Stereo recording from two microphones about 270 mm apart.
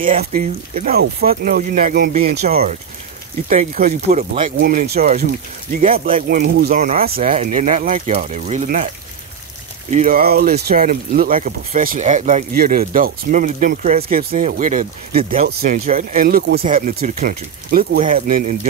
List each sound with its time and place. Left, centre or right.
0.0 s speech: right
9.8 s speech: right